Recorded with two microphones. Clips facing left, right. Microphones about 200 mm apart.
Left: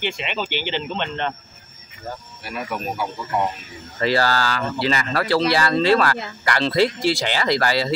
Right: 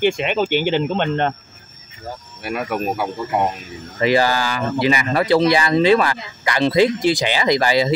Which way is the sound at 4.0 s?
15° right (ahead or behind).